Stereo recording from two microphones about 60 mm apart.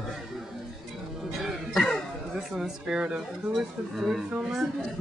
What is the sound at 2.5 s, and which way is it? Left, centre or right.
Speech, centre.